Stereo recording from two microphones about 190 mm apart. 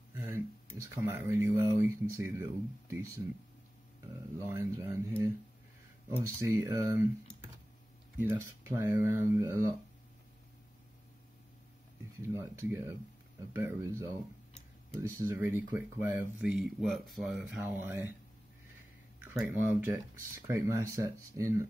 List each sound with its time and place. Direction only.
0.1 s a sound: 10° right (ahead or behind)
0.8 s speech: 15° right (ahead or behind)
4.5 s speech: 15° right (ahead or behind)
8.2 s speech: 10° right (ahead or behind)
12.2 s speech: 15° right (ahead or behind)
19.4 s speech: 5° right (ahead or behind)